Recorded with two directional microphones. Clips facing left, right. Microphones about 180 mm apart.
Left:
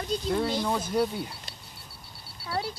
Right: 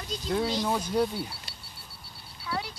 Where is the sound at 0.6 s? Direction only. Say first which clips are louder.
Even; 10° right (ahead or behind).